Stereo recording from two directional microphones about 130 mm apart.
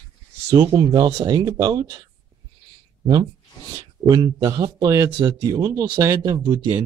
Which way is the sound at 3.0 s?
35° right (ahead or behind).